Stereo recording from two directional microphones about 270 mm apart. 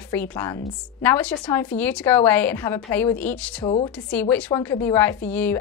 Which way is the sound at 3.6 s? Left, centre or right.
Centre.